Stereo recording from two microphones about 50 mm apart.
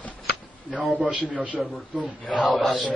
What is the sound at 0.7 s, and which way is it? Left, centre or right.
Speech, right.